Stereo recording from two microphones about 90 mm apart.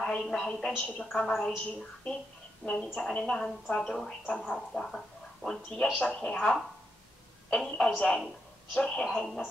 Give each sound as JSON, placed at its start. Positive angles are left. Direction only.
{"t": 0.0, "sound": "a woman's voice", "side_deg": 10}